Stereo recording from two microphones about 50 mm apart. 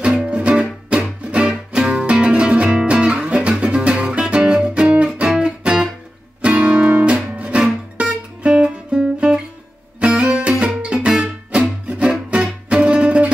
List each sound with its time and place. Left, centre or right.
0.0 s music: centre